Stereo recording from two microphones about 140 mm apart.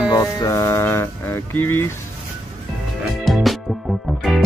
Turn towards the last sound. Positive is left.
turn(degrees=0)  # may be behind; listen again after turning